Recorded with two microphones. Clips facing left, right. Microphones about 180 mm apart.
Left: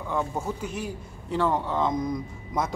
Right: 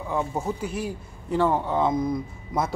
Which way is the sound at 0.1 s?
10° right (ahead or behind).